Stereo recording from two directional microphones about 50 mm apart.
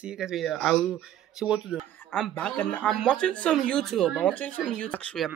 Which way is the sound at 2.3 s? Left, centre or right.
Left.